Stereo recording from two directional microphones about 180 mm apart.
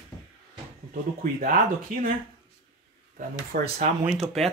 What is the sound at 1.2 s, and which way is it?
Speech, 50° right (ahead or behind).